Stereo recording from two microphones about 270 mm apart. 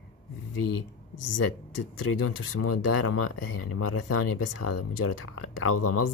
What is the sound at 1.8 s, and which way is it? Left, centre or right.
Speech, left.